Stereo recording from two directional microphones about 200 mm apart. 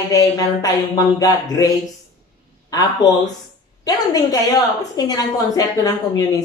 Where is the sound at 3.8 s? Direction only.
20° left (ahead or behind).